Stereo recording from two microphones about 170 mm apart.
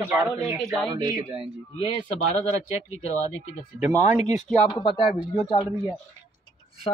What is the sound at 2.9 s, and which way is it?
Speech, 40° left (ahead or behind).